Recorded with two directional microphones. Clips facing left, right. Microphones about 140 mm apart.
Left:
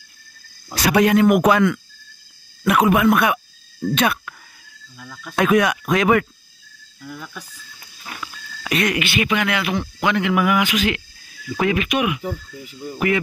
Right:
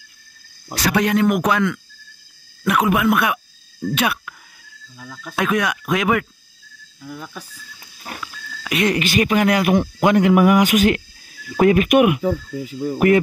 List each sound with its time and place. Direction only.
0.8 s speech: 5° left (ahead or behind)
4.9 s speech: 20° right (ahead or behind)
5.3 s speech: centre (ahead or behind)
8.1 s a sound: 45° right (ahead or behind)
8.8 s speech: 40° right (ahead or behind); by 12.8 s 60° right (ahead or behind)